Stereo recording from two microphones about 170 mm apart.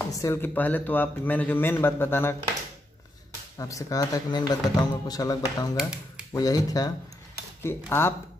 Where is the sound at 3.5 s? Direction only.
20° left (ahead or behind).